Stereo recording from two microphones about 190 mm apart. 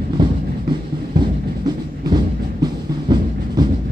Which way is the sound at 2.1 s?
25° right (ahead or behind).